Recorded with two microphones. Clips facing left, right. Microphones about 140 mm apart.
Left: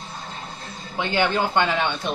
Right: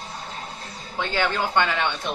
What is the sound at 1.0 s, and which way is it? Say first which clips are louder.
Speech: left 3 dB; 20° left (ahead or behind).